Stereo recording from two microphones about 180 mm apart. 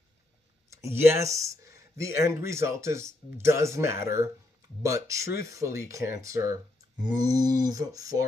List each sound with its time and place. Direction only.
0.7 s speech: 15° right (ahead or behind)